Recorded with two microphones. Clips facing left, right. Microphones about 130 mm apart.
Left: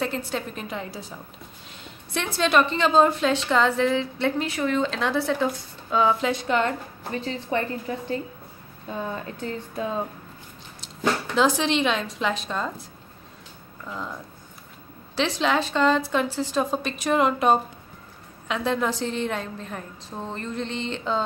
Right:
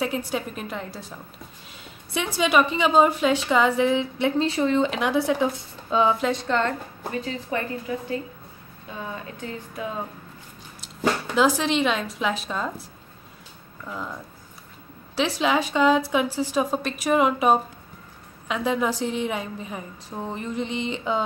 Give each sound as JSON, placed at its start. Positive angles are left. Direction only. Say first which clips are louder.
{"t": 0.0, "sound": "a woman's voice", "louder": "right 1 dB", "side_deg": -10}
{"t": 4.5, "sound": "a woman's voice", "louder": "right 3 dB", "side_deg": -25}
{"t": 6.2, "sound": "a woman's voice", "louder": "even", "side_deg": 10}
{"t": 7.2, "sound": "a woman's voice", "louder": "left 2 dB", "side_deg": 25}
{"t": 9.1, "sound": "speech", "louder": "left 3 dB", "side_deg": 35}
{"t": 10.8, "sound": "speech", "louder": "right 1 dB", "side_deg": -5}
{"t": 13.8, "sound": "speech", "louder": "even", "side_deg": -5}
{"t": 15.1, "sound": "a woman's voice", "louder": "right 1 dB", "side_deg": -5}